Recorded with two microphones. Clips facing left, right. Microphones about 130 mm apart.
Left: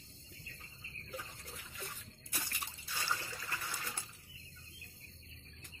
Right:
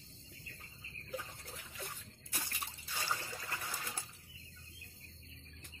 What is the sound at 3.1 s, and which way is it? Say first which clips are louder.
Water: even; 15° right (ahead or behind).